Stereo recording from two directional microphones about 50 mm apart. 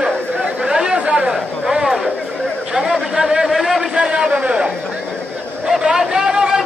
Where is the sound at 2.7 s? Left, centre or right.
Centre.